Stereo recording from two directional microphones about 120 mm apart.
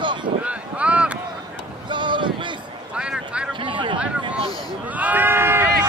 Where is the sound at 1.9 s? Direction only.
40° right (ahead or behind).